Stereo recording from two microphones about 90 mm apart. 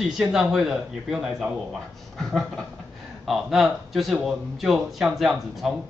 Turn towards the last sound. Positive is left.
turn(degrees=-5)  # may be behind; listen again after turning